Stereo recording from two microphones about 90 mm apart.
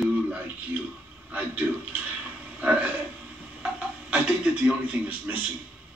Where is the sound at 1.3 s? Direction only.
20° right (ahead or behind).